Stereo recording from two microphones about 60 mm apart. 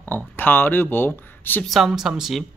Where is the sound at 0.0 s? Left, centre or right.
Left.